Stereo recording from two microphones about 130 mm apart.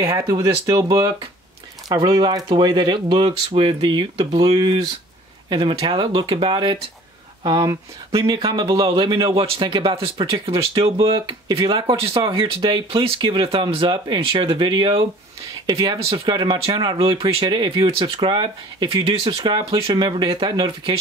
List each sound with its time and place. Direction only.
0.0 s speech: 25° right (ahead or behind)
2.0 s speech: 35° right (ahead or behind)